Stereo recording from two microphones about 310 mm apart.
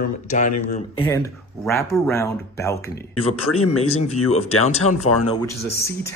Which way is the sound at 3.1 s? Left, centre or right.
Left.